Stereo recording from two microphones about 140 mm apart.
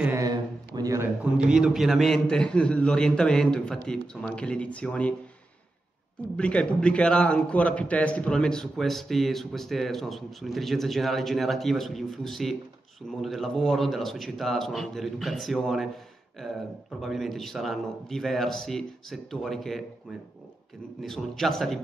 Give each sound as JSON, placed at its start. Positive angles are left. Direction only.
{"t": 0.1, "sound": "a sound", "side_deg": -25}
{"t": 1.3, "sound": "a man's voice", "side_deg": -5}
{"t": 6.3, "sound": "a man's voice", "side_deg": 10}
{"t": 17.0, "sound": "a man's voice", "side_deg": 0}
{"t": 21.0, "sound": "a man's voice", "side_deg": 0}